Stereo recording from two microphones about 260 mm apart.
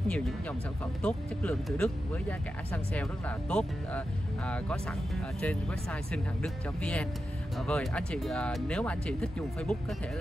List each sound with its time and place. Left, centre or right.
1.0 s speech: centre